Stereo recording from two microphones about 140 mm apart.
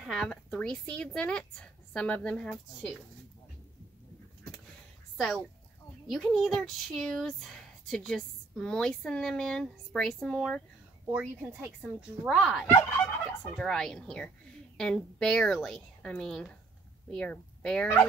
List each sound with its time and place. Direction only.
0.0 s a woman's voice: centre (ahead or behind)
5.1 s speech: centre (ahead or behind)
11.1 s speech: 10° right (ahead or behind)
12.7 s fowl: 15° left (ahead or behind)
13.6 s a woman's voice: centre (ahead or behind)